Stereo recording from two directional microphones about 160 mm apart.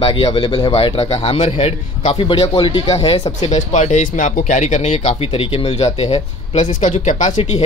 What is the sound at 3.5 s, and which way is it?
Speech, 45° left (ahead or behind).